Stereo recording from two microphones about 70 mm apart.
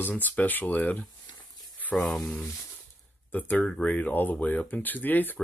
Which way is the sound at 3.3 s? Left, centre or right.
Left.